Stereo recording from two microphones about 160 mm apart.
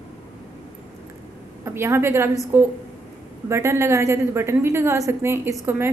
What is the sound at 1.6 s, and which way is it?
A woman's voice, 15° right (ahead or behind).